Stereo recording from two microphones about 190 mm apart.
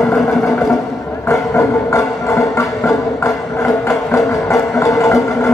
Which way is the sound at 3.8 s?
15° left (ahead or behind).